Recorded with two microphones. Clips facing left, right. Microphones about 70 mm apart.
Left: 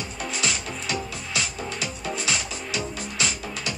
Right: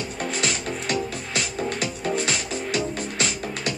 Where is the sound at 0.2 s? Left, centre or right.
Right.